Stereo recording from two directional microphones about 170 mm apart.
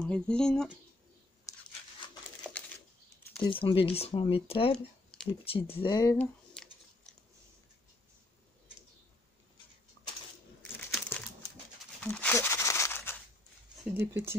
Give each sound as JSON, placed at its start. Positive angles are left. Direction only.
{"t": 0.0, "sound": "speech", "side_deg": 5}
{"t": 2.4, "sound": "a sound", "side_deg": 5}
{"t": 3.4, "sound": "speech", "side_deg": 30}
{"t": 5.9, "sound": "speech", "side_deg": 20}
{"t": 6.1, "sound": "a sound", "side_deg": 5}
{"t": 11.0, "sound": "crumpling", "side_deg": 10}
{"t": 13.9, "sound": "speech", "side_deg": -10}